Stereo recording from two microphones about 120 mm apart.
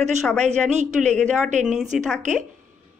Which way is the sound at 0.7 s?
80° right.